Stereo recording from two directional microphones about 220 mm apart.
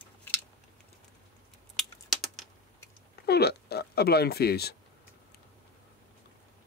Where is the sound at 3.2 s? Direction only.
45° left (ahead or behind).